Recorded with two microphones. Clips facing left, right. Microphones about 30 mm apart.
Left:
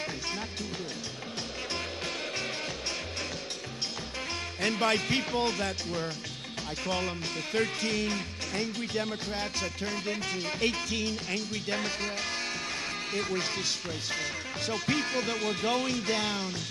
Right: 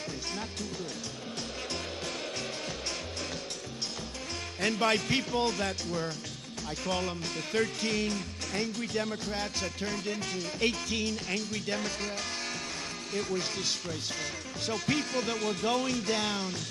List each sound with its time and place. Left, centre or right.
4.6 s speech: centre
6.8 s speech: centre
7.8 s music: centre
8.9 s speech: centre
9.6 s music: centre
9.9 s speech: centre
10.6 s music: centre
11.2 s speech: centre
13.1 s speech: left
13.4 s speech: centre